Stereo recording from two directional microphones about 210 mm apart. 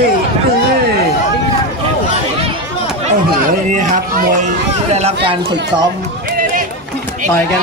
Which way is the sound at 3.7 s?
35° right (ahead or behind).